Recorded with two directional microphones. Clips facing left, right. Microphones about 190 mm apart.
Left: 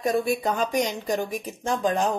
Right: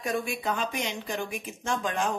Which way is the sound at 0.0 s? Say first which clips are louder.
Left 7 dB; 40° left (ahead or behind).